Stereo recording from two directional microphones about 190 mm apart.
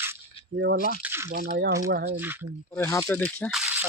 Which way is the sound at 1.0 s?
10° right (ahead or behind).